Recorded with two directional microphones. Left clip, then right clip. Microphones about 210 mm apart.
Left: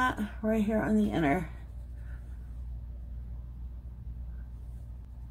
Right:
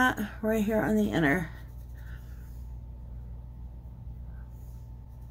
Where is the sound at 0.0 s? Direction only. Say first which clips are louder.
Right 3 dB; 15° right (ahead or behind).